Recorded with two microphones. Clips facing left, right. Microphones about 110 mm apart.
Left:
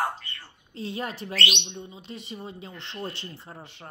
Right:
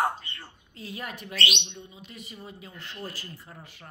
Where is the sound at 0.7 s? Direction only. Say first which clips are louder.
Left 6 dB; 30° left (ahead or behind).